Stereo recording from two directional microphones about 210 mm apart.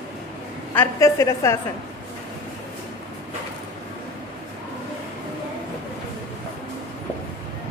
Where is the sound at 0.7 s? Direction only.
15° left (ahead or behind).